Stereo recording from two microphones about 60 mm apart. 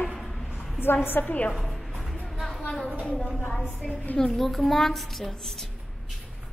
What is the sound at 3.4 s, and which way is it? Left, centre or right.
A woman's voice, centre.